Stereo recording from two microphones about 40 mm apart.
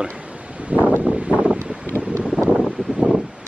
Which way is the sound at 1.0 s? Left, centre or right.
Right.